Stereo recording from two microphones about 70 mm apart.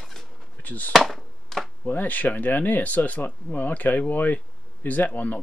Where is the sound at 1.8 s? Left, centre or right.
Left.